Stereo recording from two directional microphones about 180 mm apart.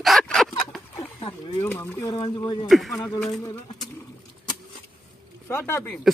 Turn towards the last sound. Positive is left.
turn(degrees=15)  # may be behind; listen again after turning